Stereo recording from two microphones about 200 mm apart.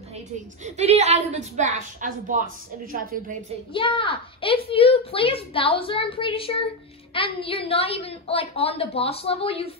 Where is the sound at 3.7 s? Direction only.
25° left (ahead or behind).